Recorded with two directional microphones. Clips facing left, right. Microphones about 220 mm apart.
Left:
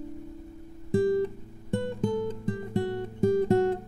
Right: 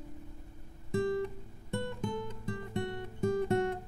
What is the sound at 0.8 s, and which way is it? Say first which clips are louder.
Guitar: left 7 dB; 35° left (ahead or behind).